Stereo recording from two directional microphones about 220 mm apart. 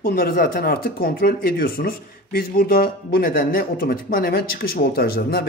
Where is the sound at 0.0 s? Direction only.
40° left (ahead or behind).